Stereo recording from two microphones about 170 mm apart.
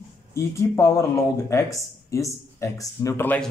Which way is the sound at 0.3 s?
15° left (ahead or behind).